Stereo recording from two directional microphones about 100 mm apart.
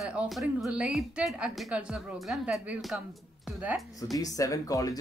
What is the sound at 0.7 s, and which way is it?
A woman's voice, 10° right (ahead or behind).